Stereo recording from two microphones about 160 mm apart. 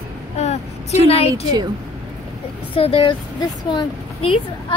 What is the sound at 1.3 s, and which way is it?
Speech, 25° right (ahead or behind).